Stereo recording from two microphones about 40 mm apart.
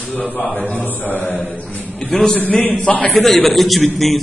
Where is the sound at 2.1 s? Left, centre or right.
Centre.